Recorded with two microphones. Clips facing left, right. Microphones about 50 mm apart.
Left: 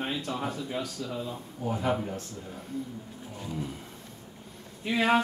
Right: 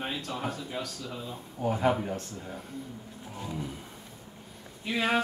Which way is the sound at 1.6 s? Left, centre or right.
Right.